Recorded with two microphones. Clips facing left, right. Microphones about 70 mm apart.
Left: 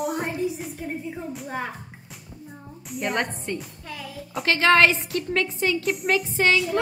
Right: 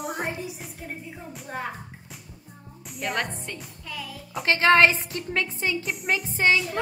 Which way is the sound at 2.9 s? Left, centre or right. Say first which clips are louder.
Left 3 dB; centre.